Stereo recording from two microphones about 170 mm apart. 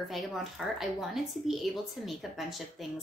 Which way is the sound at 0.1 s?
Centre (ahead or behind).